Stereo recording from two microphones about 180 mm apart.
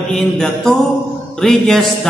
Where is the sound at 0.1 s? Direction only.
5° left (ahead or behind).